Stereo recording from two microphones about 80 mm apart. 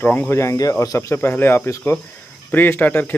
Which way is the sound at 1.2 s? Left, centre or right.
Left.